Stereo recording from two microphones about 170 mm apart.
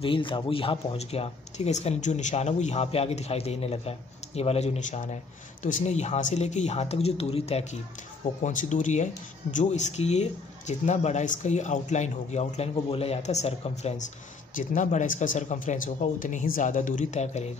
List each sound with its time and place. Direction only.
0.0 s speech: 30° left (ahead or behind)